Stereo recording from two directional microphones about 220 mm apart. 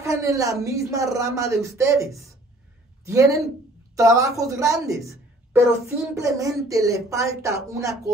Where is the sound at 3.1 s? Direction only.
15° right (ahead or behind).